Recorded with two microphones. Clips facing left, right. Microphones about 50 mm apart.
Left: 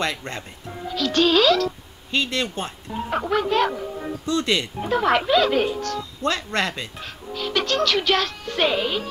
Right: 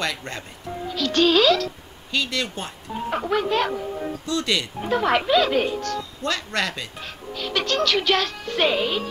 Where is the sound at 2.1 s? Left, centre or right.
Left.